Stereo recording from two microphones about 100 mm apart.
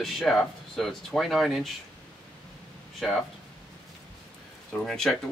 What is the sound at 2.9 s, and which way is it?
Speech, centre (ahead or behind).